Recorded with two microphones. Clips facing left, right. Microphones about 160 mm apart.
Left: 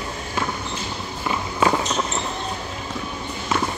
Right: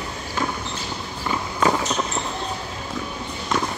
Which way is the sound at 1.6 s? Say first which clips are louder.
Left 1 dB; 5° left (ahead or behind).